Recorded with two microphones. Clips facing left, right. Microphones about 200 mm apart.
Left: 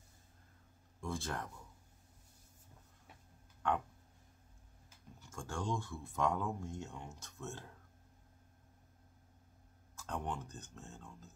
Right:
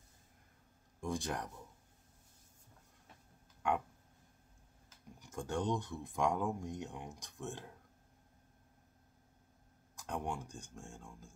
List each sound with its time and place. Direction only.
1.0 s speech: 15° right (ahead or behind)
5.2 s speech: 15° right (ahead or behind)
9.9 s speech: 15° right (ahead or behind)